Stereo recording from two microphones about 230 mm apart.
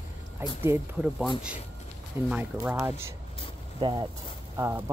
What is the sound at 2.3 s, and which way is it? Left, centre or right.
Speech, centre.